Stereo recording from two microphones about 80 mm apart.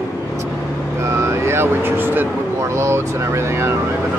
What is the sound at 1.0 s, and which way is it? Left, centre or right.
Speech, right.